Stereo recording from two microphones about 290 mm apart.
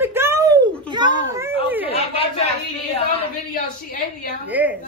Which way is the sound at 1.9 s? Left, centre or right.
Centre.